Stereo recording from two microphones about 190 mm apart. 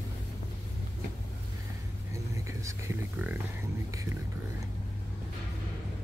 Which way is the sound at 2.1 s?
15° right (ahead or behind).